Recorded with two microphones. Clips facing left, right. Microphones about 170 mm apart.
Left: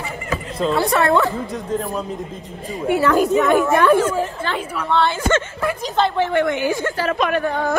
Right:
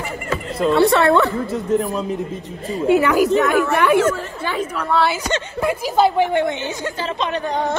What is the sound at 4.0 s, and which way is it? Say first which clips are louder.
Speech: right 1 dB; 15° left (ahead or behind).